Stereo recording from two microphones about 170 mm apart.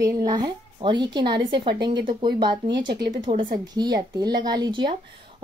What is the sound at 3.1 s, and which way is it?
Speech, 40° right (ahead or behind).